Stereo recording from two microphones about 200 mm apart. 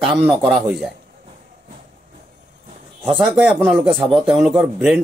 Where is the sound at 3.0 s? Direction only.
Centre (ahead or behind).